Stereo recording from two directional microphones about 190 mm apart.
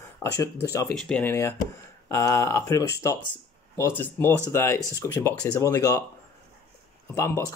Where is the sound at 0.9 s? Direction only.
5° left (ahead or behind).